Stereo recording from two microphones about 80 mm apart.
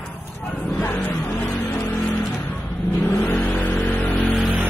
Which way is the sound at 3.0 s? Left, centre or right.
Left.